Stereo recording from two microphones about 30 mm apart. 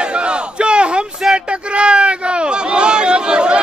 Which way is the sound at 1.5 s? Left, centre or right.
Right.